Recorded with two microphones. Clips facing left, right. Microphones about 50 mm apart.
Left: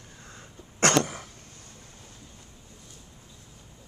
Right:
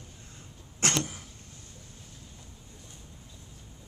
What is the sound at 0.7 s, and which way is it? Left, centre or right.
Cough, left.